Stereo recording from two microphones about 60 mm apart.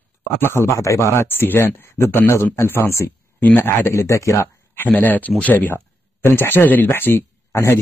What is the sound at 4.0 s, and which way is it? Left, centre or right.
Speech, left.